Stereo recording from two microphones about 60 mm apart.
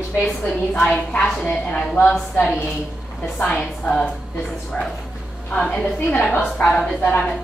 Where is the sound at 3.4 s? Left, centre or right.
Centre.